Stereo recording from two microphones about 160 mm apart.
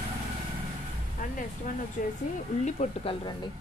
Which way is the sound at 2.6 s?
45° left (ahead or behind).